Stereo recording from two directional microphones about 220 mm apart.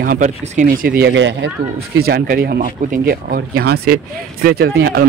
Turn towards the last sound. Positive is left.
turn(degrees=-45)  # may be behind; listen again after turning